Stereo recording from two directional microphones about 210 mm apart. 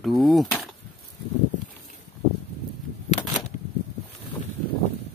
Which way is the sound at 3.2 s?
25° left (ahead or behind).